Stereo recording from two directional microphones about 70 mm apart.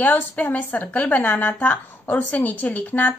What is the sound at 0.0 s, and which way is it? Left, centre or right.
Speech, left.